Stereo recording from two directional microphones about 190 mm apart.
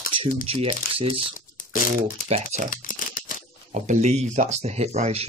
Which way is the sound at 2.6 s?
45° left (ahead or behind).